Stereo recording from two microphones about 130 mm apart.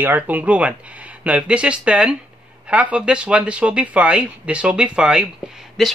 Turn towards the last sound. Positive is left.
turn(degrees=0)  # may be behind; listen again after turning